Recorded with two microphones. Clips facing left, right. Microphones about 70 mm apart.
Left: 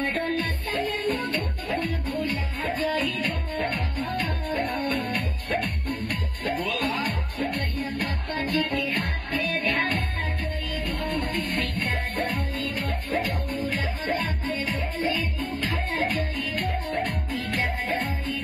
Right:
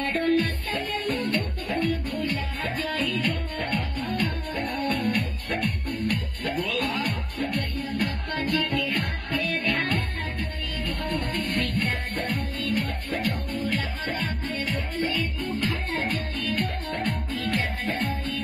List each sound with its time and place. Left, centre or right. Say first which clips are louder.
0.2 s music: right 4 dB; left
2.8 s music: left 3 dB; left
4.7 s music: right 1 dB; left
6.4 s music: left 2 dB; left
11.4 s music: right 1 dB; left